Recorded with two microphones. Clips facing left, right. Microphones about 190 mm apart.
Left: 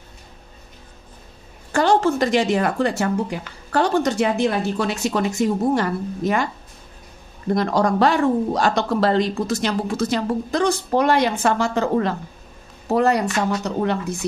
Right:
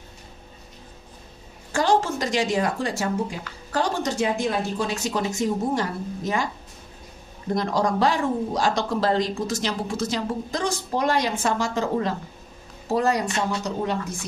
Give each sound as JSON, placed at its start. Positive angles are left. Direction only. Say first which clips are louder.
{"t": 1.7, "sound": "a woman's voice", "louder": "left 4 dB", "side_deg": 60}
{"t": 7.5, "sound": "a woman's voice", "louder": "left 4 dB", "side_deg": 60}